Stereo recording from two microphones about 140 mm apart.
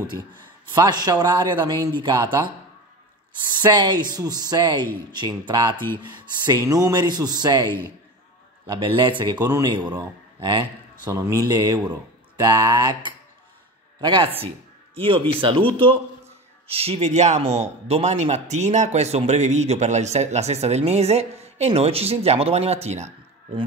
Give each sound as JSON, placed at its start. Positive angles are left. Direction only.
{"t": 0.7, "sound": "speech", "side_deg": -30}
{"t": 3.5, "sound": "a man's voice", "side_deg": -35}